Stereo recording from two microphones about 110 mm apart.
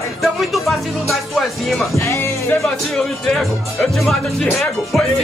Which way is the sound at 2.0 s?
25° left (ahead or behind).